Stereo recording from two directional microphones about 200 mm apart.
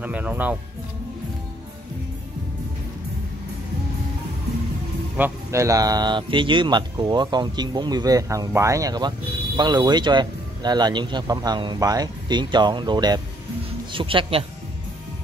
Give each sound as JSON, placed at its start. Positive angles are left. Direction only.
{"t": 0.0, "sound": "speech", "side_deg": -10}
{"t": 5.1, "sound": "speech", "side_deg": -10}